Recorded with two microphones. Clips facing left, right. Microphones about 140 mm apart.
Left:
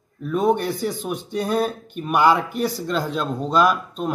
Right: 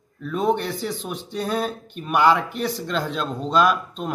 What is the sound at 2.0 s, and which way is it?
Speech, 5° left (ahead or behind).